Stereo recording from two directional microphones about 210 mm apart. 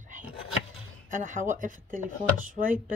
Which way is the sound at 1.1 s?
40° right (ahead or behind).